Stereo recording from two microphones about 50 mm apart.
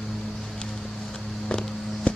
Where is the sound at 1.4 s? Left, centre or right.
Left.